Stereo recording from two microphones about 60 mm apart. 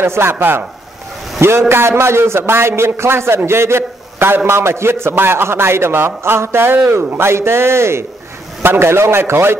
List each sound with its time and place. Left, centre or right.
0.0 s a man's voice: right